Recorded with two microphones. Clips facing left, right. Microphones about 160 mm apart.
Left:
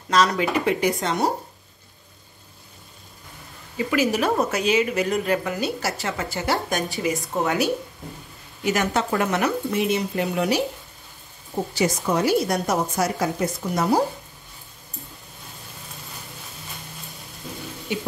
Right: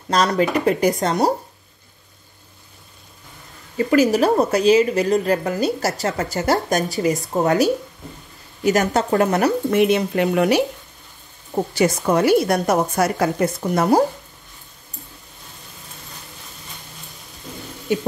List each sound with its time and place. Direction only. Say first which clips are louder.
0.1 s a woman's voice: right 2 dB; 40° right (ahead or behind)
3.7 s a woman's voice: right 6 dB; 40° right (ahead or behind)
9.7 s a woman's voice: right 6 dB; 65° right (ahead or behind)